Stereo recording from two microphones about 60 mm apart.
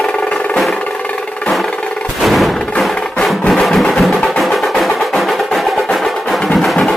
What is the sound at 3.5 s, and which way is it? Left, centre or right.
Music, centre.